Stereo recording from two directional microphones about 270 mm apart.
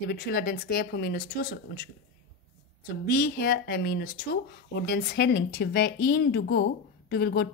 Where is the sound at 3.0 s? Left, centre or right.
Left.